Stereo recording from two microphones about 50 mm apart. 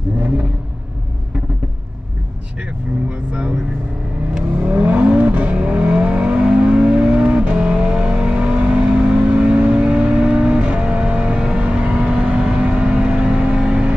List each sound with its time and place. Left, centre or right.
3.1 s vehicle: right
4.6 s vehicle: right